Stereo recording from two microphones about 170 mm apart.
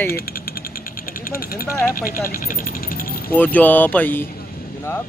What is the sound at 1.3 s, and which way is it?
Speech, 55° left (ahead or behind).